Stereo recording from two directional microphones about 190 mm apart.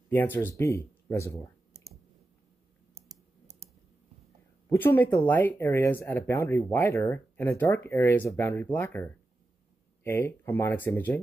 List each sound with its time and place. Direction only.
0.1 s speech: 10° left (ahead or behind)
4.6 s speech: 10° left (ahead or behind)